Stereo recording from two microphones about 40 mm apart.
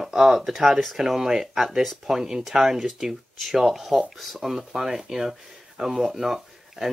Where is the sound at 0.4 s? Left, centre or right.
Centre.